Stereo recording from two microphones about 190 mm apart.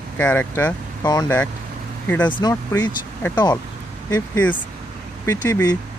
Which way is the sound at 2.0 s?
10° left (ahead or behind).